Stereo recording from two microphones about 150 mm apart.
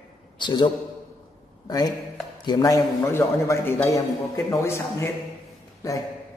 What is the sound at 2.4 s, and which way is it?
A man's voice, 25° left (ahead or behind).